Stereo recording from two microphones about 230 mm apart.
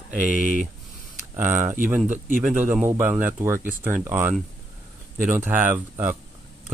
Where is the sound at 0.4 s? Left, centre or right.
Left.